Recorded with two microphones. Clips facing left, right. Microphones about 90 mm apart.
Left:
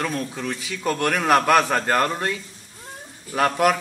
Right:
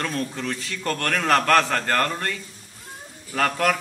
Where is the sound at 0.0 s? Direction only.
5° left (ahead or behind).